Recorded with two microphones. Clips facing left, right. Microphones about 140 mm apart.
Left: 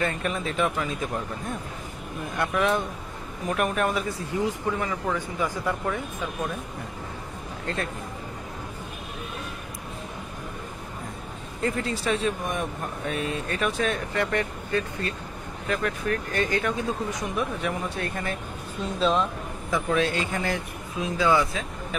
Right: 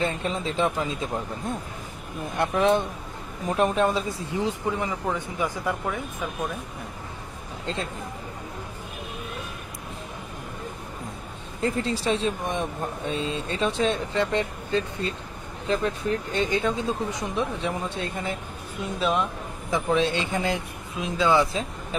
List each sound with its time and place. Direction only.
0.0 s speech: 25° right (ahead or behind)
2.3 s speech: 30° right (ahead or behind)
11.6 s speech: 30° right (ahead or behind)
18.9 s speech: 5° right (ahead or behind)
19.7 s speech: 25° right (ahead or behind)